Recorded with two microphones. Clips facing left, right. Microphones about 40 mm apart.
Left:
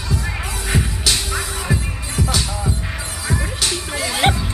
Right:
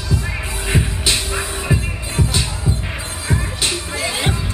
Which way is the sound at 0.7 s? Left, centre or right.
Right.